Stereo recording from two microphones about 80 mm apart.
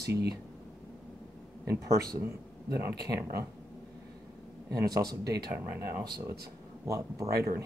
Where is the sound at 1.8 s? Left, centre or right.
Right.